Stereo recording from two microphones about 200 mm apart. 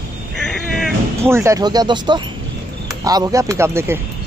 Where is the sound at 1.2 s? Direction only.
15° right (ahead or behind).